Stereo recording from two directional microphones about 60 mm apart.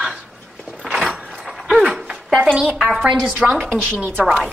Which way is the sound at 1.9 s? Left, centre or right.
Centre.